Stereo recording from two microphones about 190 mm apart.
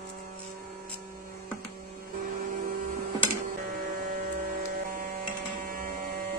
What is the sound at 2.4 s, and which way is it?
Vehicle, 50° right (ahead or behind).